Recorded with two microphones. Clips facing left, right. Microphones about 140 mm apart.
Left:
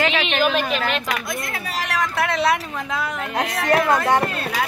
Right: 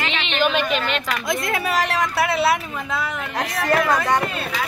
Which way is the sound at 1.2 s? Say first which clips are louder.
Right 5 dB; 90° right.